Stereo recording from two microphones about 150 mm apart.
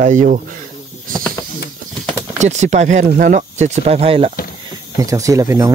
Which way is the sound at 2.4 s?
50° right (ahead or behind).